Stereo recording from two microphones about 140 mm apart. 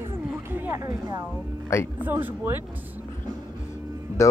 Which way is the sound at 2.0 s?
10° right (ahead or behind).